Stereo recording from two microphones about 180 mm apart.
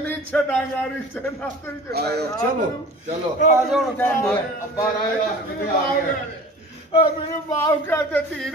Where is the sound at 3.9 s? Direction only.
10° left (ahead or behind).